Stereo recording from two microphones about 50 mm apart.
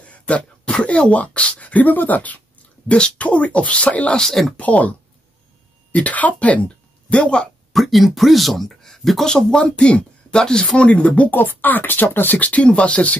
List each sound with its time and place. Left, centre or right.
0.0 s speech: left
4.2 s speech: centre
4.6 s speech: left
7.7 s speech: centre; by 13.2 s left